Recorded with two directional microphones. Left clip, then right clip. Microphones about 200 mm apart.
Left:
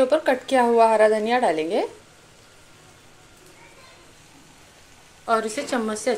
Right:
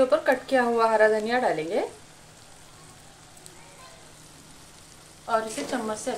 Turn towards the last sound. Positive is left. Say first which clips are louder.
# left 6 dB
turn(degrees=45)  # may be behind; listen again after turning